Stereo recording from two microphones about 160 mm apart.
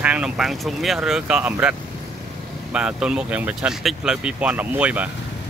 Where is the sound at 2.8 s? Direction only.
5° right (ahead or behind).